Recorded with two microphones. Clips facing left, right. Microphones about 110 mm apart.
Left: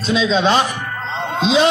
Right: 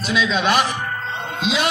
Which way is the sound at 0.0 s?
25° left (ahead or behind).